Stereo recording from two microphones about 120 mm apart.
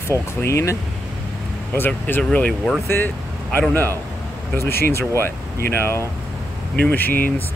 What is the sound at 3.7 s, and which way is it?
Speech, 15° left (ahead or behind).